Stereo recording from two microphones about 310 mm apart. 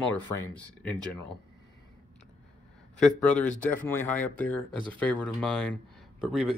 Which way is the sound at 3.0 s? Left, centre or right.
Centre.